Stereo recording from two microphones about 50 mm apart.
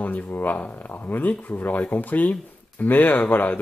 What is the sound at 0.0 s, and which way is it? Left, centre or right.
Speech, left.